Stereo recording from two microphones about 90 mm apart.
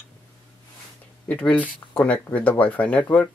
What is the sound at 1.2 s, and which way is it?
Speech, 15° left (ahead or behind).